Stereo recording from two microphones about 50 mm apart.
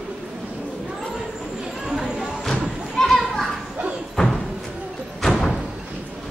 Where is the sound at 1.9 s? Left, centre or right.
Centre.